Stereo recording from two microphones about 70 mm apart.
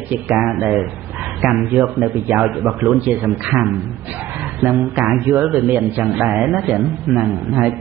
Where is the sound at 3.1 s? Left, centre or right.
Right.